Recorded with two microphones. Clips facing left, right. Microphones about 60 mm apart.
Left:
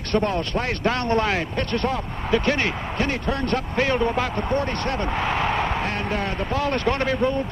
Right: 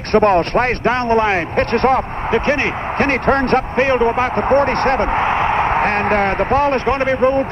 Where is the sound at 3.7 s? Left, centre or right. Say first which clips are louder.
Right 4 dB; right.